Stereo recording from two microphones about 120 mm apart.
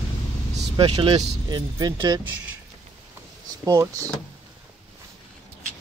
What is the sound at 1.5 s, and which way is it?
Speech, 35° right (ahead or behind).